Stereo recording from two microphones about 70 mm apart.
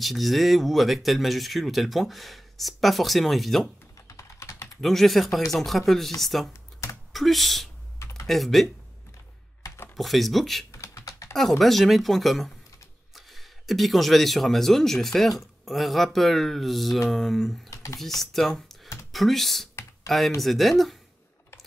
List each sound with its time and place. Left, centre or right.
0.0 s speech: centre
4.1 s typing: left
4.8 s speech: centre
9.9 s speech: centre
10.7 s typing: left
11.3 s speech: centre
17.6 s speech: left
18.3 s speech: centre
19.7 s computer keyboard: left
20.3 s speech: centre